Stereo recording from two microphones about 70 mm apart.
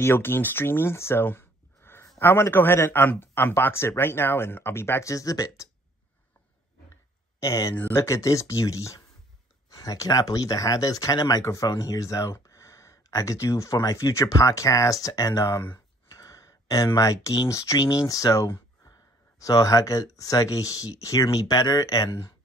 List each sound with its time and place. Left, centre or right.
0.0 s a man's voice: left
5.1 s speech: left
7.3 s speech: left
15.7 s a sound: left
17.8 s speech: left